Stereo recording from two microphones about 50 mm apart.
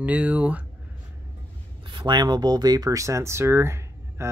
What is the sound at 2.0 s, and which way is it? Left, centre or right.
Speech, right.